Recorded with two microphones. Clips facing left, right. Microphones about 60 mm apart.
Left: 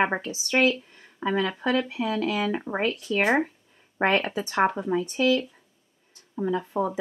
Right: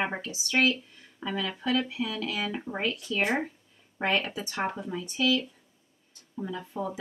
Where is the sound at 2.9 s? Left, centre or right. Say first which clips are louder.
Left 4 dB; left.